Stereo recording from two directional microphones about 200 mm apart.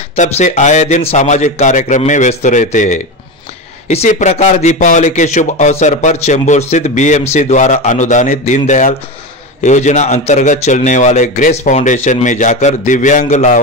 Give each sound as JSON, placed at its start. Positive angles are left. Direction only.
{"t": 0.1, "sound": "speech", "side_deg": 35}